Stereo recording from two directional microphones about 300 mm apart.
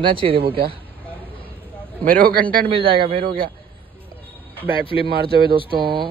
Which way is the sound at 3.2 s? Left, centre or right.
Right.